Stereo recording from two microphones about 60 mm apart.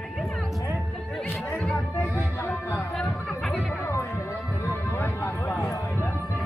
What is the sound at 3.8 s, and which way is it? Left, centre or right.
Music, left.